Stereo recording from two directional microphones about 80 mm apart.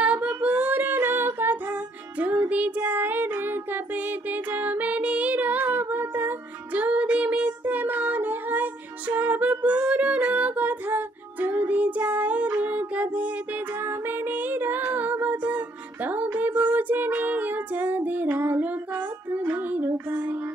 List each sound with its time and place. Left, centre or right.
0.0 s female singing: centre
9.1 s music: centre
20.1 s child singing: right